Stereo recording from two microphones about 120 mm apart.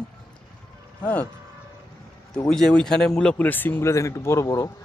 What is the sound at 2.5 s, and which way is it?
Speech, 5° left (ahead or behind).